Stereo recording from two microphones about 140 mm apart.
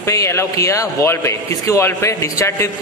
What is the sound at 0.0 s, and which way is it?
A man's voice, 20° left (ahead or behind).